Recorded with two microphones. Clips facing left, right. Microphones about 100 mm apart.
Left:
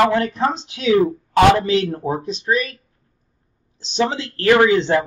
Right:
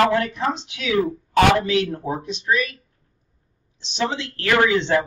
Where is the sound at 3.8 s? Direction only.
35° left (ahead or behind).